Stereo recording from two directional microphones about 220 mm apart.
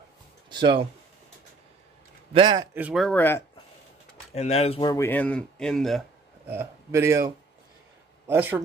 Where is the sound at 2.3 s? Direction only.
20° right (ahead or behind).